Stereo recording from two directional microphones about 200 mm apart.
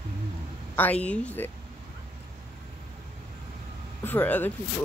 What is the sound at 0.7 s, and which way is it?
Speech, 10° left (ahead or behind).